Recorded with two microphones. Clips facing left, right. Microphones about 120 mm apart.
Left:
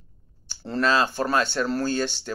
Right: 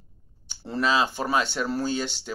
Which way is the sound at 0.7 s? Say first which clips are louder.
Left 2 dB; 15° right (ahead or behind).